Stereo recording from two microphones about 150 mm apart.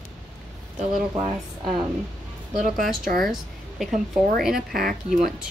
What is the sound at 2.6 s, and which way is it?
Speech, 65° right (ahead or behind).